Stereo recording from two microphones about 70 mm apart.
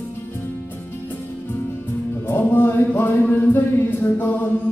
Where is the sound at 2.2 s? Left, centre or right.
Left.